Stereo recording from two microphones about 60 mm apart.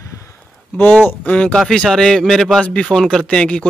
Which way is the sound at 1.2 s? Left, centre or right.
Centre.